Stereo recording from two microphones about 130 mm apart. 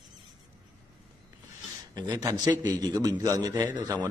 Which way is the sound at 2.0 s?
30° right (ahead or behind).